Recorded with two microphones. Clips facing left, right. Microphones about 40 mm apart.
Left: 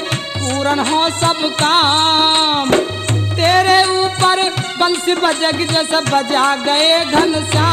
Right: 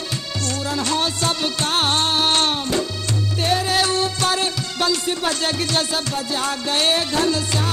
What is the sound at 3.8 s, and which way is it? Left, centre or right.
Music, left.